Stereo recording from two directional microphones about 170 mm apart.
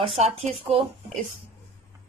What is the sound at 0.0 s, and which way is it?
Speech, 35° right (ahead or behind).